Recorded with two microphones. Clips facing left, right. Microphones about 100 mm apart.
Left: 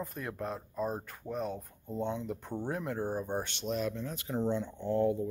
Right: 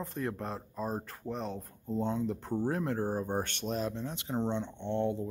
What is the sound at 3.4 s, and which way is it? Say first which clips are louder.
Speech: even; 45° right (ahead or behind).